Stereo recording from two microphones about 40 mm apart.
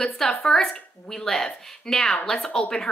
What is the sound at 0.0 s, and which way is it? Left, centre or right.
Speech, centre.